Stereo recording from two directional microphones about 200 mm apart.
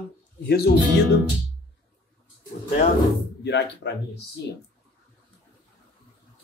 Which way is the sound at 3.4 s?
60° left (ahead or behind).